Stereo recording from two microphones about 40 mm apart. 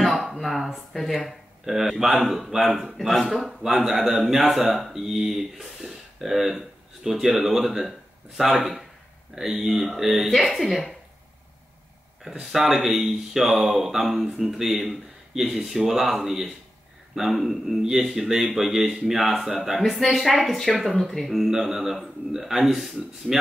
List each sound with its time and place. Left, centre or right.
0.0 s a man's voice: centre
4.9 s a man's voice: centre
12.3 s a man's voice: centre